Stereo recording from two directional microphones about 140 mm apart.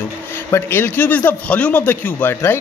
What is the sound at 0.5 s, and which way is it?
Speech, 15° left (ahead or behind).